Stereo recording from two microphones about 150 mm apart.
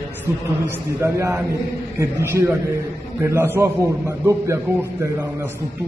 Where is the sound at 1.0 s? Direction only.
20° right (ahead or behind).